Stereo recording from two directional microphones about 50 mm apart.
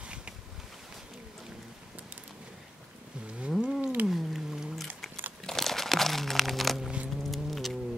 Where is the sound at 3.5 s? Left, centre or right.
Centre.